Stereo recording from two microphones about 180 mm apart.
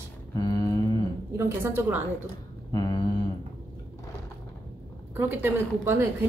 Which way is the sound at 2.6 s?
20° left (ahead or behind).